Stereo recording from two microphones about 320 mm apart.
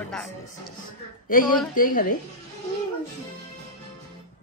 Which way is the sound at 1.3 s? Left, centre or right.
Left.